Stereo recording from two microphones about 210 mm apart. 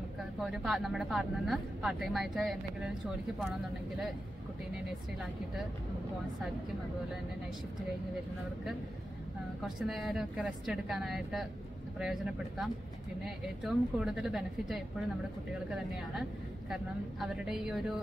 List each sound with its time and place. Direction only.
0.4 s speech: centre (ahead or behind)
9.8 s speech: centre (ahead or behind)
16.7 s speech: centre (ahead or behind)